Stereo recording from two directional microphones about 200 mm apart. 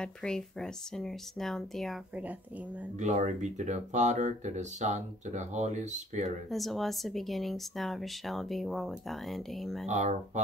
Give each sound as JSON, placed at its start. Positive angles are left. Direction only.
{"t": 0.0, "sound": "speech", "side_deg": 5}
{"t": 3.0, "sound": "speech", "side_deg": -35}
{"t": 6.5, "sound": "speech", "side_deg": 0}
{"t": 9.8, "sound": "speech", "side_deg": -35}